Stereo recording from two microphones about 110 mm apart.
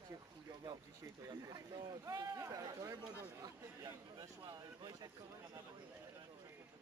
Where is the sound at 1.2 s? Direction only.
35° right (ahead or behind).